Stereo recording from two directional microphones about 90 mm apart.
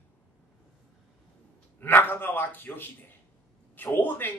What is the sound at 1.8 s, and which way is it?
A man's voice, 25° left (ahead or behind).